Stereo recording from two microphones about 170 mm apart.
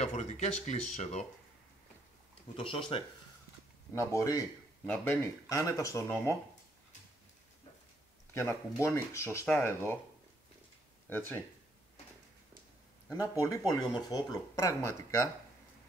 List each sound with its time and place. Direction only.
0.0 s speech: 40° left (ahead or behind)
2.5 s speech: 30° left (ahead or behind)
3.9 s speech: 15° left (ahead or behind)
8.3 s speech: 15° left (ahead or behind)
11.1 s speech: 10° left (ahead or behind)
13.1 s speech: 20° left (ahead or behind)